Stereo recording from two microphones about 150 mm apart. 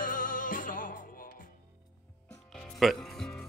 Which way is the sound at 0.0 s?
65° left (ahead or behind).